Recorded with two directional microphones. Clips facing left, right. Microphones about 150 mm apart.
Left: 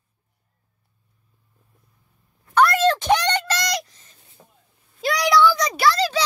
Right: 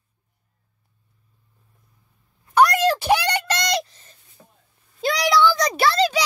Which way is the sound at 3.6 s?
25° right (ahead or behind).